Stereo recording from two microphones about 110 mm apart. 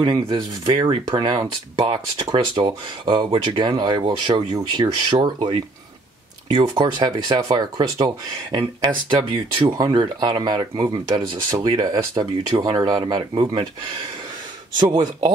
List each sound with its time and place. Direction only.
0.0 s speech: 50° right (ahead or behind)
4.0 s speech: 50° right (ahead or behind)